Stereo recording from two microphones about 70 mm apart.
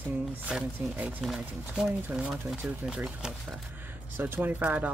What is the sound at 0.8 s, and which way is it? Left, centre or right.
Speech, right.